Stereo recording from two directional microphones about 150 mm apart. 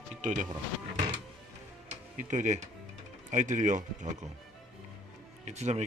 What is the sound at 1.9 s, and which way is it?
Speech, 55° right (ahead or behind).